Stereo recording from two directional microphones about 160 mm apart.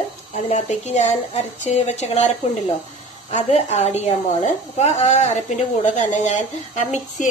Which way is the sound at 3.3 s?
45° left (ahead or behind).